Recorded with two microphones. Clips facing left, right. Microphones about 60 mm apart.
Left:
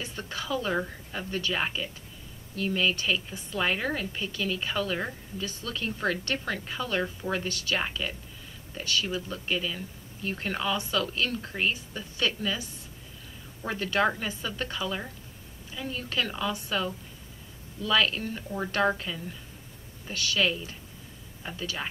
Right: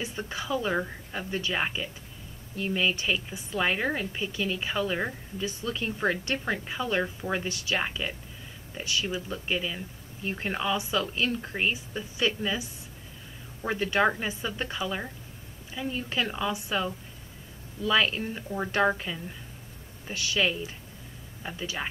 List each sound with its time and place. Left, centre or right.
0.0 s a woman's voice: centre